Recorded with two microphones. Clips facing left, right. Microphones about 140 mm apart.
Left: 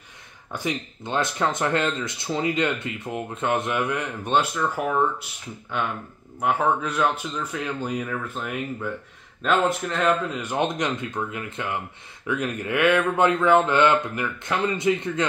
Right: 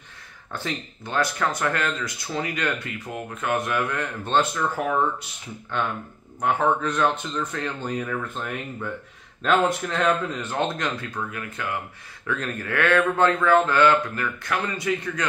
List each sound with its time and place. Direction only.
0.5 s speech: 15° left (ahead or behind)
6.4 s speech: 5° left (ahead or behind)
10.4 s speech: 15° left (ahead or behind)